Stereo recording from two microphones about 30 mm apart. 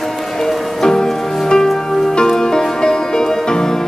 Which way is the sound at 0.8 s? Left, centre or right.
Left.